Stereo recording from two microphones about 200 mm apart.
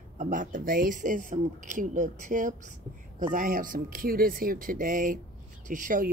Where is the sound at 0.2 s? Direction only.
40° right (ahead or behind).